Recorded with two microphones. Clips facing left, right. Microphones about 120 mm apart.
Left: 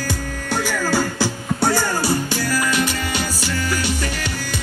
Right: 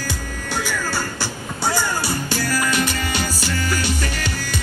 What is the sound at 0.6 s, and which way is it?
Music, 80° left.